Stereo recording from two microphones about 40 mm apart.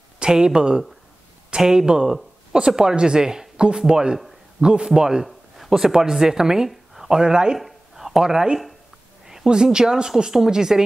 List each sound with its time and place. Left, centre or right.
0.2 s speech: centre
5.2 s speech: centre
6.7 s a sound: centre
7.1 s speech: centre
7.5 s a sound: centre
9.5 s speech: centre